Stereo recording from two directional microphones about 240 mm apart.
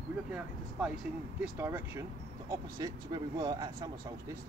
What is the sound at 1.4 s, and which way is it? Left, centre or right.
Speech, centre.